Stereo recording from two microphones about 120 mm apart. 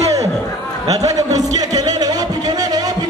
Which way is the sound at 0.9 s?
30° right (ahead or behind).